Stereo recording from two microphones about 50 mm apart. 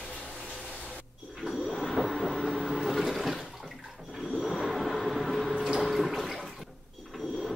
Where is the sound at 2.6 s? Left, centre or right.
Centre.